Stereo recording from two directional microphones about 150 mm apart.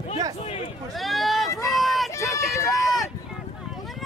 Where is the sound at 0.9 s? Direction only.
Centre (ahead or behind).